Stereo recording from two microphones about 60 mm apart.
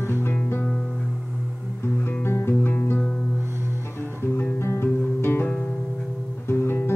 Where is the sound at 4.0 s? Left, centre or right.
Left.